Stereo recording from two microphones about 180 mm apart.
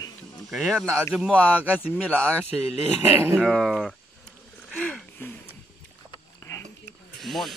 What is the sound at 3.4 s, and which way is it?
Speech, centre (ahead or behind).